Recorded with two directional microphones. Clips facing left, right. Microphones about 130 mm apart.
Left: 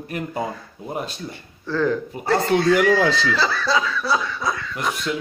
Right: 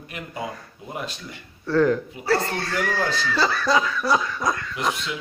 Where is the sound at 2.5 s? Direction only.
90° left.